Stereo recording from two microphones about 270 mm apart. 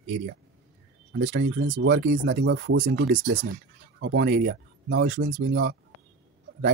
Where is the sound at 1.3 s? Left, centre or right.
Right.